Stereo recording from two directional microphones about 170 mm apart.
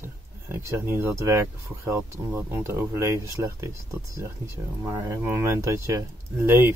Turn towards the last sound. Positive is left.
turn(degrees=-15)  # may be behind; listen again after turning